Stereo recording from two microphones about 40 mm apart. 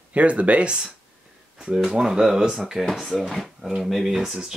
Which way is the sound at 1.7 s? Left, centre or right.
Centre.